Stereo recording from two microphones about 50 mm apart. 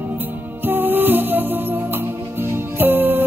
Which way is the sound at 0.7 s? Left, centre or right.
Right.